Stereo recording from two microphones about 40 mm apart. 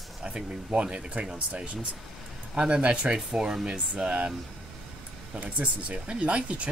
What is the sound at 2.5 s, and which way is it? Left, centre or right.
Speech, right.